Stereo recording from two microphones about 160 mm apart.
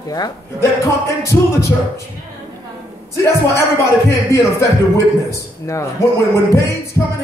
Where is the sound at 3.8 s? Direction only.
20° left (ahead or behind).